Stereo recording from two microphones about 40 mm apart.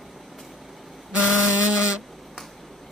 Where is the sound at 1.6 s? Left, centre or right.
Right.